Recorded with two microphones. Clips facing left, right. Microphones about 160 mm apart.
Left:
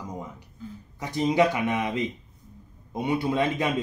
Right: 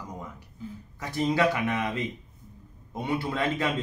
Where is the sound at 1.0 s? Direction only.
15° left (ahead or behind).